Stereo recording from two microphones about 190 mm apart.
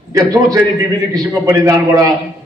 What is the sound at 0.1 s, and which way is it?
A man's voice, 20° right (ahead or behind).